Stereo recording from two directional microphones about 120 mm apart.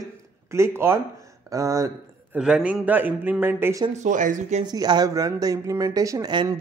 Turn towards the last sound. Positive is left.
turn(degrees=-35)  # may be behind; listen again after turning